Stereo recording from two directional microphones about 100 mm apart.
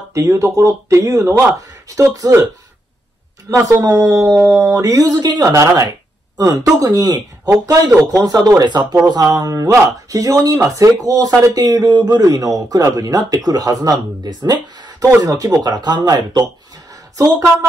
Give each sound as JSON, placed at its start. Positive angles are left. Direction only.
{"t": 0.1, "sound": "speech", "side_deg": -25}
{"t": 3.4, "sound": "speech", "side_deg": -35}
{"t": 4.2, "sound": "speech", "side_deg": 0}
{"t": 4.7, "sound": "speech", "side_deg": -35}